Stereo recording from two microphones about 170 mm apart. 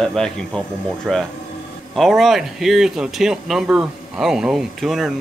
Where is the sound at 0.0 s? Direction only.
5° left (ahead or behind).